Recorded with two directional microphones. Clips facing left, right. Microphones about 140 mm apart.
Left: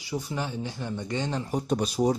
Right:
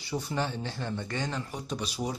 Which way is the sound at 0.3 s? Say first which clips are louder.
Even; 10° left (ahead or behind).